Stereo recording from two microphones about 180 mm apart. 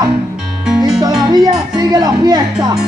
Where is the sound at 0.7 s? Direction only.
5° right (ahead or behind).